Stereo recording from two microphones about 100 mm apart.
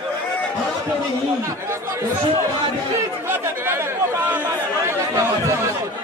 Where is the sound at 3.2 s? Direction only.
25° right (ahead or behind).